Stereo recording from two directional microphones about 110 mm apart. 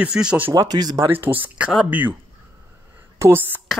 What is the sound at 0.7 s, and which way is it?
Speech, 35° right (ahead or behind).